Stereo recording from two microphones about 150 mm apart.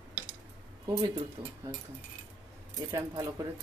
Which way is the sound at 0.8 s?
25° right (ahead or behind).